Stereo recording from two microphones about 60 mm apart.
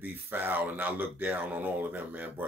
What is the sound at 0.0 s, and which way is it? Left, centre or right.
Speech, right.